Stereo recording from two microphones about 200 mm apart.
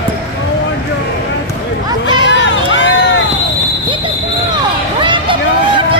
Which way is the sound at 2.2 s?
65° left (ahead or behind).